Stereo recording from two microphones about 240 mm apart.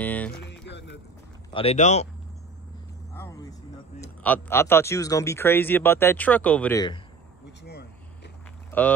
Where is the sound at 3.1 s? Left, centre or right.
Centre.